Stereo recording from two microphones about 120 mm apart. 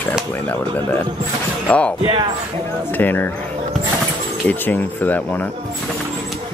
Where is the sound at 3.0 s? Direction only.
15° left (ahead or behind).